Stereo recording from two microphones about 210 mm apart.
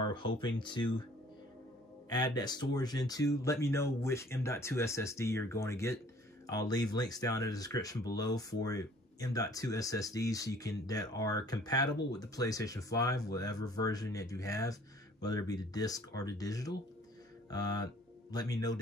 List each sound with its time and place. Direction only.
0.1 s speech: 25° left (ahead or behind)
2.0 s speech: 20° left (ahead or behind)